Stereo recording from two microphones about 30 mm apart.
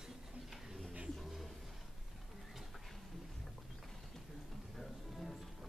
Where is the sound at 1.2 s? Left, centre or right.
Centre.